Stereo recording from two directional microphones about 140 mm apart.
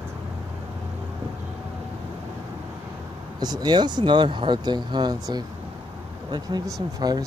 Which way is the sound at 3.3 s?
30° right (ahead or behind).